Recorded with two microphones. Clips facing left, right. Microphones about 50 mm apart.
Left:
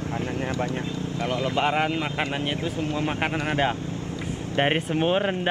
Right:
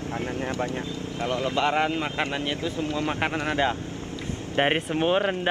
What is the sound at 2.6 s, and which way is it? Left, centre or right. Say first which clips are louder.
Speech: even; left.